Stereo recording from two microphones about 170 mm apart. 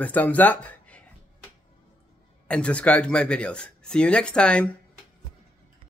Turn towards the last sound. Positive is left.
turn(degrees=5)  # may be behind; listen again after turning